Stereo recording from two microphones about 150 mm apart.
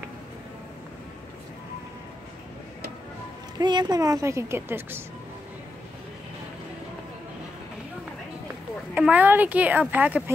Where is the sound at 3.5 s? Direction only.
30° right (ahead or behind).